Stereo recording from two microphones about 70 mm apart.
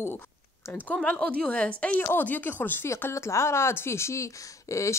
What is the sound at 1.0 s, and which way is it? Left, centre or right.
Speech, left.